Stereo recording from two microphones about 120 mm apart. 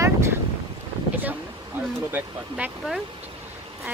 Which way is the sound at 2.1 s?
15° right (ahead or behind).